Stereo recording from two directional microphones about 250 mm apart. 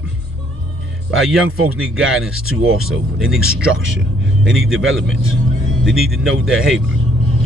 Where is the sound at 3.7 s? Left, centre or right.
Right.